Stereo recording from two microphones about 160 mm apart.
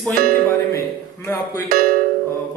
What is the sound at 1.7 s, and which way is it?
Speech, 60° right (ahead or behind).